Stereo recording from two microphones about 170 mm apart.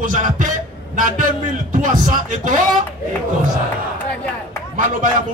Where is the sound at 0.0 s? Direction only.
50° right (ahead or behind).